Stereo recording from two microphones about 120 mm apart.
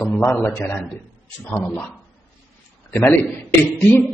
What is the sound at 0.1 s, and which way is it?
Speech, 10° left (ahead or behind).